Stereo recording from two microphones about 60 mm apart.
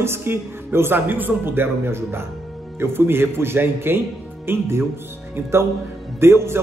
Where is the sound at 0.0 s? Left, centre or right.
Right.